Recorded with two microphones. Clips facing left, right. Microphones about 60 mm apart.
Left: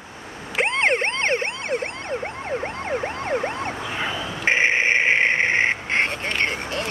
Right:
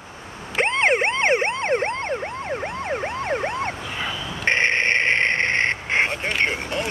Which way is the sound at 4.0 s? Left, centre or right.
Centre.